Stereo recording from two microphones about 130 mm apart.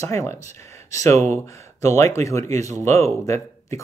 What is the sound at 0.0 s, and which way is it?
Speech, 20° left (ahead or behind).